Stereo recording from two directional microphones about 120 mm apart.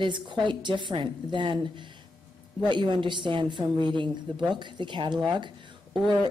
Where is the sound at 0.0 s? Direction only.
40° right (ahead or behind).